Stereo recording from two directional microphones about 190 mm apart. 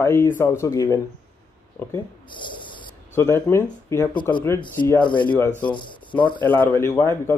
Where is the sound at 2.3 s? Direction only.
25° left (ahead or behind).